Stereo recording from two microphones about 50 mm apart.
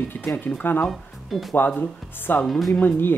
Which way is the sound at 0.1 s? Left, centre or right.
Left.